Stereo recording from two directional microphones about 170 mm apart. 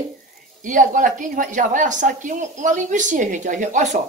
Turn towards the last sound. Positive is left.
turn(degrees=-50)  # may be behind; listen again after turning